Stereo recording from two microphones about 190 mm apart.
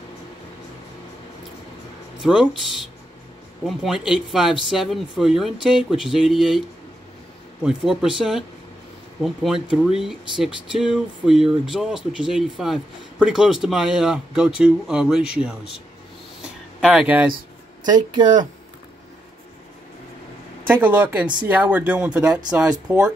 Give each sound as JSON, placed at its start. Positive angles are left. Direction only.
{"t": 2.2, "sound": "speech", "side_deg": 0}
{"t": 3.6, "sound": "speech", "side_deg": 0}
{"t": 7.6, "sound": "speech", "side_deg": -5}
{"t": 16.8, "sound": "speech", "side_deg": -5}
{"t": 18.1, "sound": "speech", "side_deg": -25}
{"t": 20.6, "sound": "speech", "side_deg": -10}